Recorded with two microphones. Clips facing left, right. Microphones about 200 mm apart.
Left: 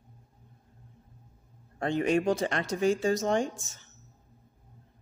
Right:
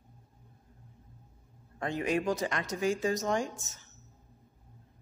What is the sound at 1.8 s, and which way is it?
A man's voice, 30° left (ahead or behind).